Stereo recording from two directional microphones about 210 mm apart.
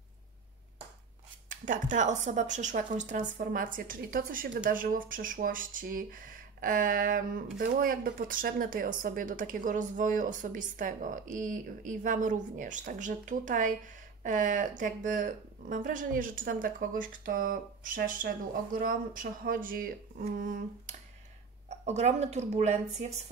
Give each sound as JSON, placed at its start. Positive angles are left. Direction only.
{"t": 1.5, "sound": "speech", "side_deg": -35}